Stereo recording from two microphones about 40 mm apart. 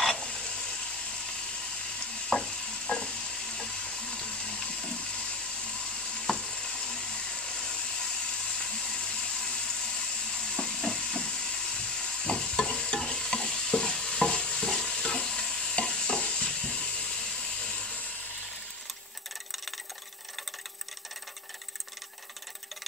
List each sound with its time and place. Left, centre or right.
0.0 s sizzle: centre
2.2 s stir: centre
3.0 s frying: left
6.1 s frying: centre
8.5 s water: centre
10.9 s a sound: centre
11.1 s stir: centre
17.6 s a sound: centre